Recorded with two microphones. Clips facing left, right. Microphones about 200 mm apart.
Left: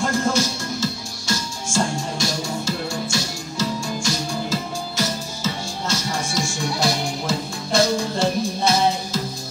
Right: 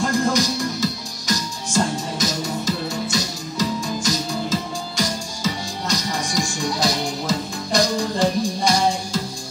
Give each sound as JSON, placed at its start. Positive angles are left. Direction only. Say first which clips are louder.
{"t": 0.0, "sound": "music", "louder": "right 1 dB", "side_deg": -15}